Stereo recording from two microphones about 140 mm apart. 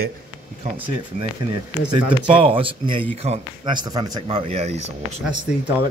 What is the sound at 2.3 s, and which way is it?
Speech, 40° right (ahead or behind).